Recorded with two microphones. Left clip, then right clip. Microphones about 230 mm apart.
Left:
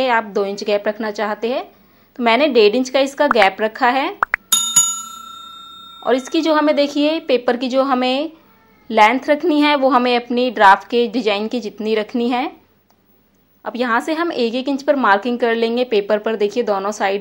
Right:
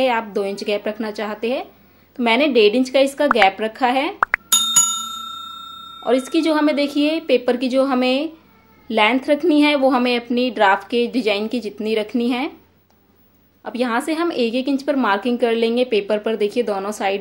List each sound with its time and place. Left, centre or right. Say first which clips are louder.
0.0 s a woman's voice: left 2 dB; centre
13.6 s a woman's voice: left 3 dB; centre